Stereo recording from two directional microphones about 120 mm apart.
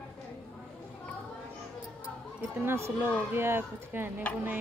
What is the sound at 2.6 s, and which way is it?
Speech, 20° right (ahead or behind).